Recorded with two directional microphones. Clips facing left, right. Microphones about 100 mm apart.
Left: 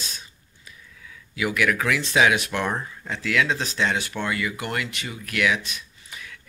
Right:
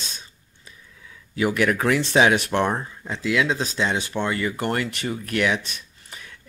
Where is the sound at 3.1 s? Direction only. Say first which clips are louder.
Right 1 dB; 20° right (ahead or behind).